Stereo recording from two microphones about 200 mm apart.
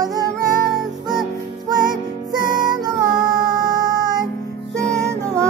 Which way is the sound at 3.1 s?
20° right (ahead or behind).